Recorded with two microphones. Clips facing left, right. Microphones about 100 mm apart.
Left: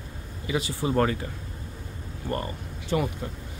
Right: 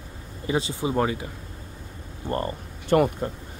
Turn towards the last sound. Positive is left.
turn(degrees=-55)  # may be behind; listen again after turning